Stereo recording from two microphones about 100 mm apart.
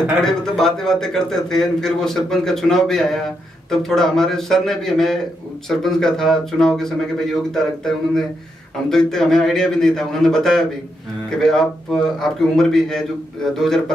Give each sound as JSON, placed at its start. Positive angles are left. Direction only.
{"t": 0.2, "sound": "a man's voice", "side_deg": 5}